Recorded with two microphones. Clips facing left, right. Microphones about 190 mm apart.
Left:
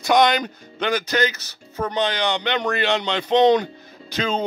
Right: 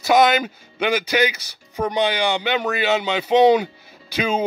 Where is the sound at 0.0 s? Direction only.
5° right (ahead or behind).